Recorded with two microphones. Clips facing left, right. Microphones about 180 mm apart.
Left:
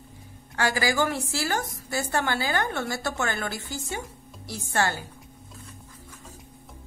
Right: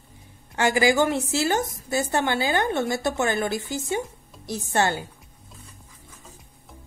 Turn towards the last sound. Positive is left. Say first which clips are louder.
# right 3 dB
turn(degrees=-20)  # may be behind; listen again after turning